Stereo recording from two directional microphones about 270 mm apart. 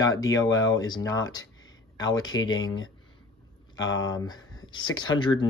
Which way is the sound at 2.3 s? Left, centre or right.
Left.